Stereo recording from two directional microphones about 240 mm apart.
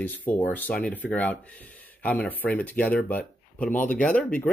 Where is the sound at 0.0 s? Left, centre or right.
Centre.